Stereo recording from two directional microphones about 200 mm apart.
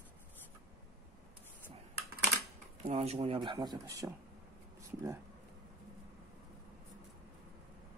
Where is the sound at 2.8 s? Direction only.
30° right (ahead or behind).